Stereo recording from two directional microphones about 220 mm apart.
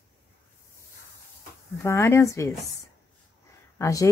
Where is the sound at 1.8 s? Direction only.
10° left (ahead or behind).